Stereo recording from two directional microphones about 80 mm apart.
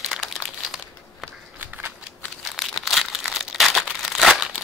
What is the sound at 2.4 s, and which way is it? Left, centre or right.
Crumpling, centre.